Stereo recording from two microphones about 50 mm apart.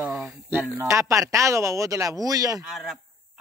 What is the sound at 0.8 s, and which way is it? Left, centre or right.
Speech, right.